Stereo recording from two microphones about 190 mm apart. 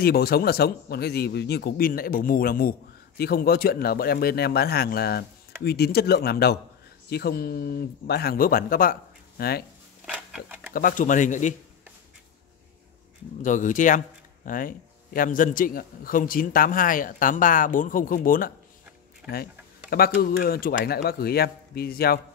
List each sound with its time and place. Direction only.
0.0 s speech: 55° left (ahead or behind)
10.7 s speech: 45° left (ahead or behind)
13.4 s speech: 40° left (ahead or behind)
19.2 s speech: 5° right (ahead or behind)
19.9 s speech: 50° left (ahead or behind)